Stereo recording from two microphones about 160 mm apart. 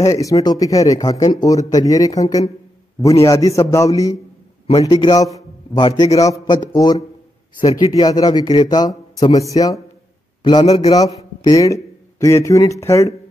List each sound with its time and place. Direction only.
0.0 s speech: 20° left (ahead or behind)
10.6 s a man's voice: 40° left (ahead or behind)
10.9 s a man's voice: 20° left (ahead or behind)